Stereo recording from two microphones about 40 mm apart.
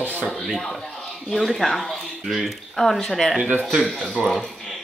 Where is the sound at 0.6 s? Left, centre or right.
Centre.